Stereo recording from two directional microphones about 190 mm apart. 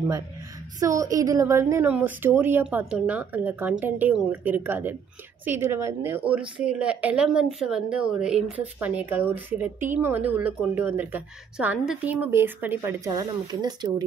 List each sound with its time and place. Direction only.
0.7 s speech: 20° right (ahead or behind)